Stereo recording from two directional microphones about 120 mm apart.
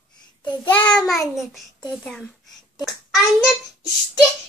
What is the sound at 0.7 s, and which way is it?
Speech, 10° left (ahead or behind).